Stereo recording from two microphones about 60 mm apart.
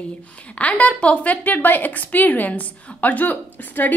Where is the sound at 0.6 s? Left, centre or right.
Left.